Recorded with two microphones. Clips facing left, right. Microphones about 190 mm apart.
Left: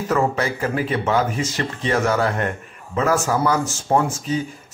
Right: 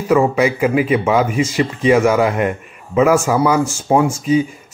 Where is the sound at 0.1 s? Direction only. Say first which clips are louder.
Right 7 dB; 10° right (ahead or behind).